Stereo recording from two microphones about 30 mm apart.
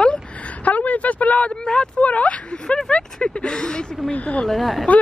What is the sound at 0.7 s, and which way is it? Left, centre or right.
Speech, left.